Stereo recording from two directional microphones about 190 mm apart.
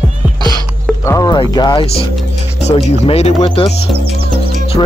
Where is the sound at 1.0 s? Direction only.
15° left (ahead or behind); by 3.6 s 30° left (ahead or behind).